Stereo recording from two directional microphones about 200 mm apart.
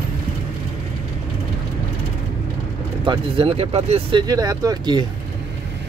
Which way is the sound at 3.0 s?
25° right (ahead or behind).